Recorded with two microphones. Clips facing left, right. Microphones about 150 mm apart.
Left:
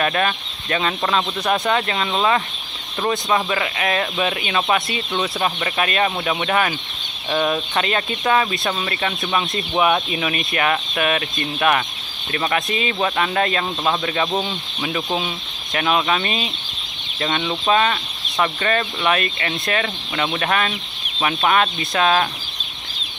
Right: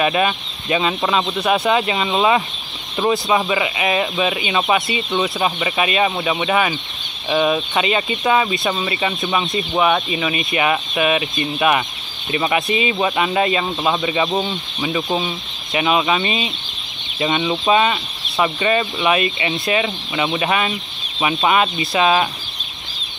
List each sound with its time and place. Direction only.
0.0 s speech: 10° right (ahead or behind)
3.1 s speech: 5° right (ahead or behind)
12.3 s speech: 15° right (ahead or behind)